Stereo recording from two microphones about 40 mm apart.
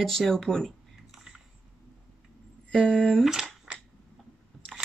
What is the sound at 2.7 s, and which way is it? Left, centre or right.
Speech, centre.